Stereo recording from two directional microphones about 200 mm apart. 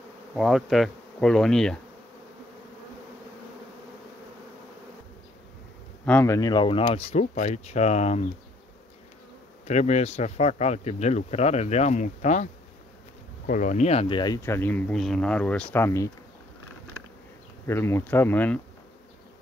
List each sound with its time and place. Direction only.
0.3 s bee: centre (ahead or behind)
6.0 s speech: 10° left (ahead or behind); by 8.3 s 35° left (ahead or behind)
9.7 s speech: 35° left (ahead or behind)
13.5 s speech: 40° left (ahead or behind); by 16.1 s 15° left (ahead or behind)
17.6 s speech: 10° left (ahead or behind)